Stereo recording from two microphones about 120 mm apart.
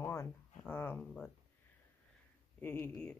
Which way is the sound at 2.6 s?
15° left (ahead or behind).